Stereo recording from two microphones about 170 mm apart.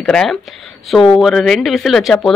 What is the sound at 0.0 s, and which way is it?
Speech, 5° left (ahead or behind).